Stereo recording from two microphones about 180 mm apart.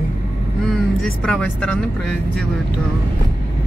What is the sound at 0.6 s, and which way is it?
Speech, centre (ahead or behind).